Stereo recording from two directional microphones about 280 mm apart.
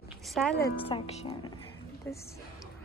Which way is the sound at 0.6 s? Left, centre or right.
Centre.